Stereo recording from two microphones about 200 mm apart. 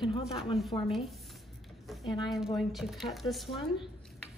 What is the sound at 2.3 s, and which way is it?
A woman's voice, centre (ahead or behind).